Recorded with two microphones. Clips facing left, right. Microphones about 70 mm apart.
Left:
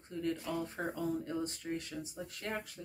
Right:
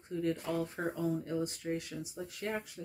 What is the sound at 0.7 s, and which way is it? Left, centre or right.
Speech, centre.